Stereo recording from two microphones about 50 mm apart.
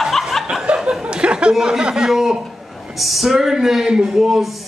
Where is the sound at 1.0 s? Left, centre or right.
Centre.